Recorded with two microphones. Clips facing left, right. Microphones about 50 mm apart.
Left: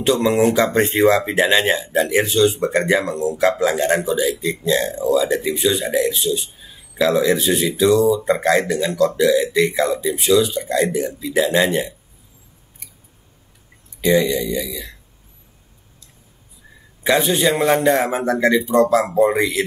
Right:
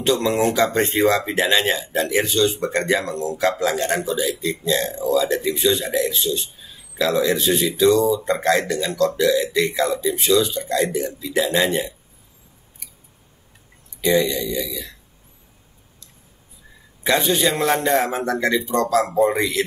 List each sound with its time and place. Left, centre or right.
0.0 s a man's voice: centre
9.5 s a man's voice: centre
14.1 s a man's voice: centre
17.0 s a man's voice: centre